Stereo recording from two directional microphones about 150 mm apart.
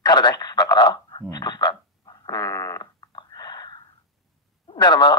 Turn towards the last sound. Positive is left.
turn(degrees=30)  # may be behind; listen again after turning